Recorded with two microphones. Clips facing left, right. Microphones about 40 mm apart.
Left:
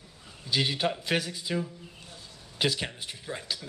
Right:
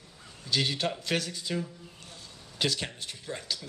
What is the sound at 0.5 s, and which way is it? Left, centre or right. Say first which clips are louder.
Speech: left 2 dB; centre.